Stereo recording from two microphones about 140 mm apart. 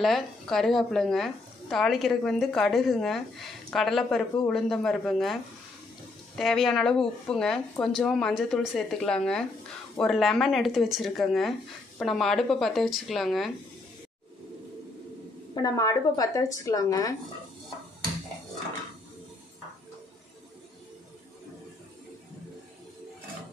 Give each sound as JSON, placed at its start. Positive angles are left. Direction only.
{"t": 0.0, "sound": "a woman's voice", "side_deg": 0}
{"t": 15.5, "sound": "a woman's voice", "side_deg": 25}